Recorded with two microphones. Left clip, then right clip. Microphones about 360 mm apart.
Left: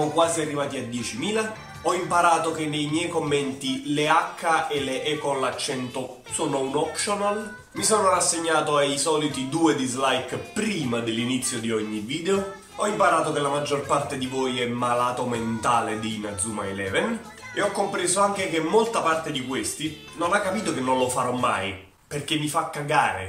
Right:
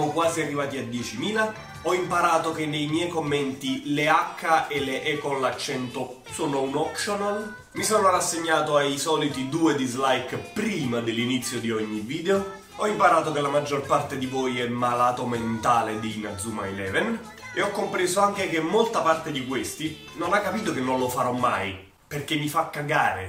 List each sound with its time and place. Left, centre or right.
0.0 s speech: centre